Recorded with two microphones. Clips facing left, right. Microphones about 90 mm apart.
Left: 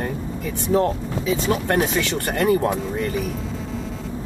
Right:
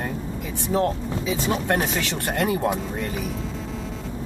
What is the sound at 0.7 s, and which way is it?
Speech, centre (ahead or behind).